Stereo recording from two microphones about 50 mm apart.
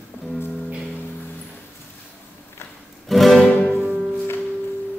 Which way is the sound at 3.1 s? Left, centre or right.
Centre.